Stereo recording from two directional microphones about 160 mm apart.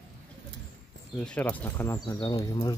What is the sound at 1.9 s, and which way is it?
Speech, 25° left (ahead or behind).